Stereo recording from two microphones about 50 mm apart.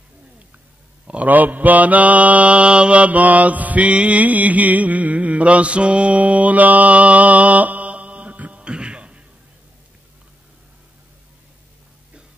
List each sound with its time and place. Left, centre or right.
1.0 s mantra: right